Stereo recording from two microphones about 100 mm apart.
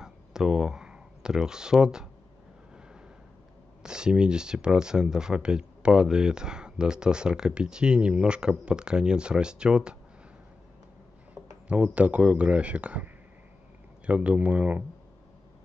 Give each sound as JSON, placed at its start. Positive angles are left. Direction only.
{"t": 0.0, "sound": "a sound", "side_deg": -5}
{"t": 3.8, "sound": "speech", "side_deg": -10}
{"t": 11.7, "sound": "speech", "side_deg": -15}